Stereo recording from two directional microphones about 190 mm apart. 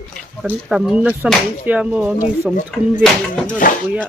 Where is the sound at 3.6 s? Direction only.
45° left (ahead or behind).